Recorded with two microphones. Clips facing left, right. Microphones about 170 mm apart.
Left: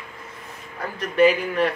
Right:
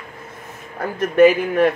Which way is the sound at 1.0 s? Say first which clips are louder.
Right 5 dB; 50° right (ahead or behind).